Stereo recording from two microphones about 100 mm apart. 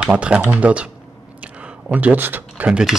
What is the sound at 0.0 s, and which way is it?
Speech, 10° right (ahead or behind).